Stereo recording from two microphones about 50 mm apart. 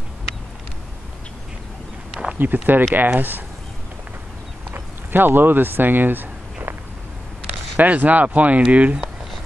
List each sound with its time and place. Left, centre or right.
2.3 s speech: right
4.7 s speech: right
7.7 s speech: right